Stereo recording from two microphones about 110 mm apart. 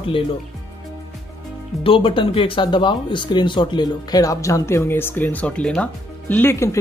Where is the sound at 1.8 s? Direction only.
55° left (ahead or behind).